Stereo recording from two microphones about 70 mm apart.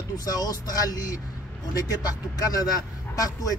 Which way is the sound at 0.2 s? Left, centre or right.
Left.